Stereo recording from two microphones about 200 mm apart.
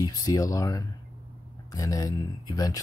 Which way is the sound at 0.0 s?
20° left (ahead or behind).